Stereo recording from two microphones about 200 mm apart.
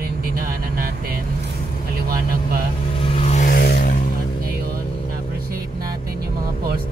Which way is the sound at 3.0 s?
30° left (ahead or behind).